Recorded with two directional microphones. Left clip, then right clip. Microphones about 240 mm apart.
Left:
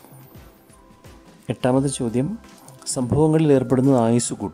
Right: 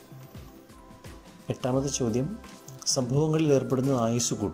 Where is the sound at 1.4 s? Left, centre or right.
Centre.